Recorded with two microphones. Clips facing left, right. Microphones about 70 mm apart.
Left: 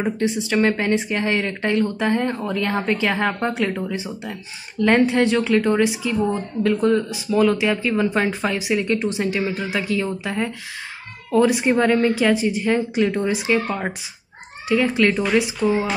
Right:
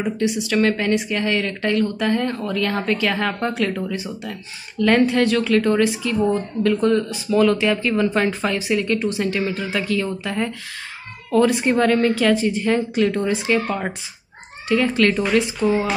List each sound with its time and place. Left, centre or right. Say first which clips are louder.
0.0 s speech: even; left; by 15.4 s centre